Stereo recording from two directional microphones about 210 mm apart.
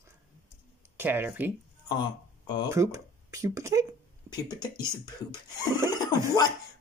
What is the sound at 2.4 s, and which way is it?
Speech, 20° left (ahead or behind).